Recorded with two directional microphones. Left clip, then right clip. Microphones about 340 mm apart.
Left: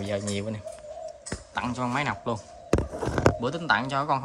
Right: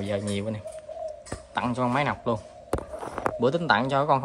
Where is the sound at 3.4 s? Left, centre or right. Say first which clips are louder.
Right 3 dB; centre.